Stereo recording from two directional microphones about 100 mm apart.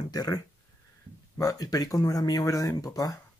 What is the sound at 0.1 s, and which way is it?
Speech, 40° left (ahead or behind).